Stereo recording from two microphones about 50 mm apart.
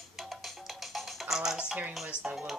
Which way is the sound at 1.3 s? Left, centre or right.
Centre.